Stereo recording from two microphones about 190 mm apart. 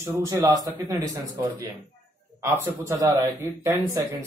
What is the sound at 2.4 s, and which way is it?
Speech, 15° right (ahead or behind).